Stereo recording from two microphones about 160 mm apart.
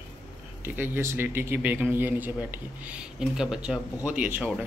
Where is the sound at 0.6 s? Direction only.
10° right (ahead or behind).